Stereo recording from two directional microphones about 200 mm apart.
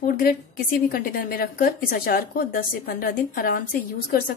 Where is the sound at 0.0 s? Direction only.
45° left (ahead or behind).